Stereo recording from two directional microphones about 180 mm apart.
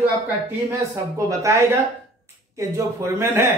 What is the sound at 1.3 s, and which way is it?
Speech, 15° right (ahead or behind).